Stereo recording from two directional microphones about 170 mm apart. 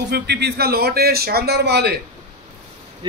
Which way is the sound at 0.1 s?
75° right (ahead or behind).